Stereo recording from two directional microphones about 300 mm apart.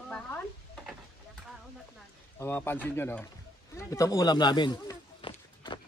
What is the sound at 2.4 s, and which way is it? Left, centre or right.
Speech, centre.